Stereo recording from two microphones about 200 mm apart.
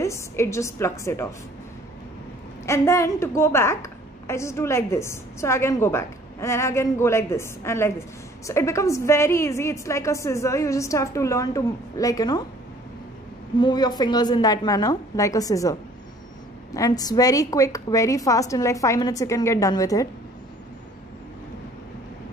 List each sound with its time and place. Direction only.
0.0 s a woman's voice: 15° left (ahead or behind)
2.6 s a woman's voice: 15° left (ahead or behind)
13.6 s a woman's voice: 20° left (ahead or behind)